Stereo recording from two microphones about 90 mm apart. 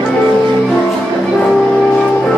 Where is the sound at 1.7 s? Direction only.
10° left (ahead or behind).